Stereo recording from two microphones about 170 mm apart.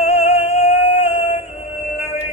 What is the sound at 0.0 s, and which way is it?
Music, 40° left (ahead or behind).